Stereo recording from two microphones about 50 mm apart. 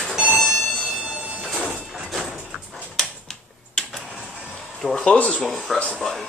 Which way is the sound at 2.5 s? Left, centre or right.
Centre.